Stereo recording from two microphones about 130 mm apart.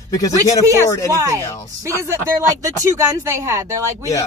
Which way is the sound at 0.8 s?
25° left (ahead or behind).